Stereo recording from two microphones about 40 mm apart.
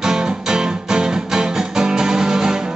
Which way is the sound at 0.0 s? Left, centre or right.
Centre.